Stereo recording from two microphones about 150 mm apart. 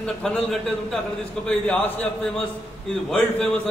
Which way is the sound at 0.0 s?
5° left (ahead or behind).